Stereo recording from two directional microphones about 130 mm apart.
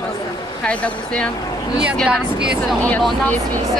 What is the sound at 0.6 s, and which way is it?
Speech, 10° left (ahead or behind).